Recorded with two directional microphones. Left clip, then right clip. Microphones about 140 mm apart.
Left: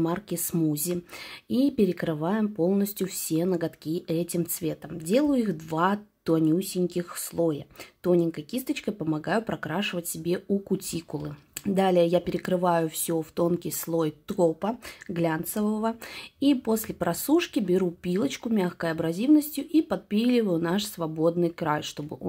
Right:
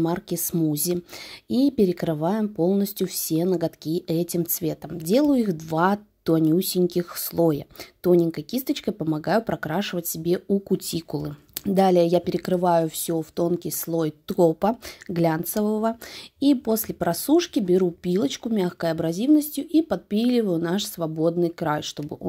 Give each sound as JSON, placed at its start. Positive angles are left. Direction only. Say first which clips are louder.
{"t": 0.0, "sound": "speech", "louder": "right 3 dB", "side_deg": -35}
{"t": 14.6, "sound": "speech", "louder": "right 7 dB", "side_deg": -45}